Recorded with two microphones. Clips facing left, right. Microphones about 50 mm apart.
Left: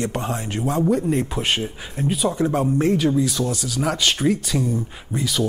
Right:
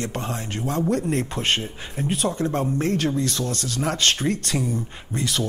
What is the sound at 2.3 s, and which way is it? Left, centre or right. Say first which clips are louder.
Speech: left 4 dB; centre.